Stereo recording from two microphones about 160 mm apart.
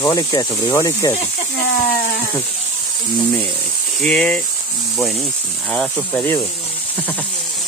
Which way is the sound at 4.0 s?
5° left (ahead or behind).